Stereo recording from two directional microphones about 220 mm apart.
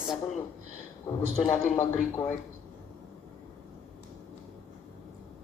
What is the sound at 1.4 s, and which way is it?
Speech, 10° left (ahead or behind).